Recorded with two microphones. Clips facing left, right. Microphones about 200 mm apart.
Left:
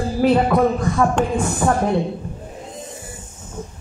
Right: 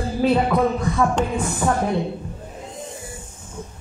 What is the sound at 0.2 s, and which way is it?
Speech, 55° left (ahead or behind).